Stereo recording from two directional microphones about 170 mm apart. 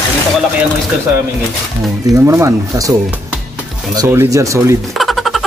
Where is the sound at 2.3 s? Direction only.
20° right (ahead or behind).